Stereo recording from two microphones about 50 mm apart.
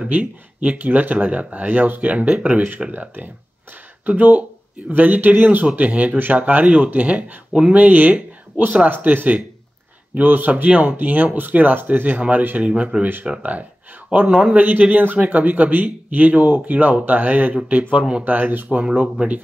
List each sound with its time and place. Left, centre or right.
0.1 s speech: right
5.8 s speech: right
7.8 s speech: right
12.6 s speech: right
14.5 s speech: right
17.9 s speech: right
18.2 s speech: right
18.9 s speech: right